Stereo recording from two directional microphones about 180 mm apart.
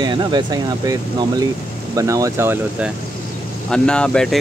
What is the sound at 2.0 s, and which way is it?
Speech, 20° right (ahead or behind).